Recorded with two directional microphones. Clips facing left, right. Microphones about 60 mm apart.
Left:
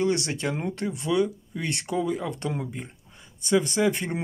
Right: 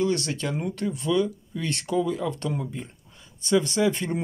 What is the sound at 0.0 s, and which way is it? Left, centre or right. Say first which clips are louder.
Speech: even; left.